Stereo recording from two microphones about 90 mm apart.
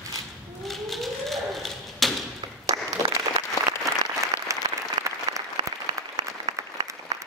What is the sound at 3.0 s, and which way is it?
Applause, 35° left (ahead or behind).